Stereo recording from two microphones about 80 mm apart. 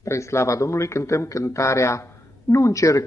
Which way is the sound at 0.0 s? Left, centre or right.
Left.